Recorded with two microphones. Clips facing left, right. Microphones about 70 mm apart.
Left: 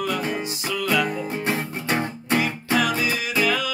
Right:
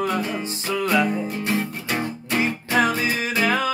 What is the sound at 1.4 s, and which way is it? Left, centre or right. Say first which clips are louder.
Music: right 1 dB; left.